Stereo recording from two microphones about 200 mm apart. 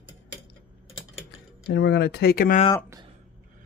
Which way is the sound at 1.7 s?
55° left (ahead or behind).